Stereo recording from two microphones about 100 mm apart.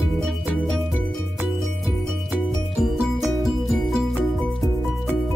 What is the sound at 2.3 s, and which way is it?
Music, 5° right (ahead or behind).